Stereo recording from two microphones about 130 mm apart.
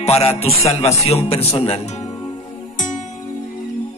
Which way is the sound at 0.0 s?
50° left (ahead or behind).